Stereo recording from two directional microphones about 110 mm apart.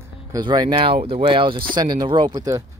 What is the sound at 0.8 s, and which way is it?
Speech, 55° right (ahead or behind).